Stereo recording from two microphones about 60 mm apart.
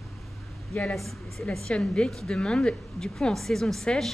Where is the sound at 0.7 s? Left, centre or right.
Left.